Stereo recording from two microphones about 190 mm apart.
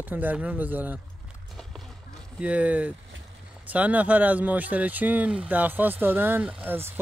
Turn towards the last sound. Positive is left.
turn(degrees=-10)  # may be behind; listen again after turning